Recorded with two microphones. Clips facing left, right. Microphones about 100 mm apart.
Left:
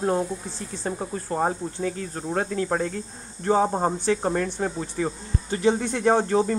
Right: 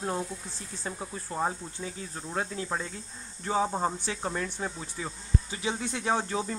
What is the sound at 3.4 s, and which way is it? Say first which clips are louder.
Speech: left 7 dB; 45° left (ahead or behind).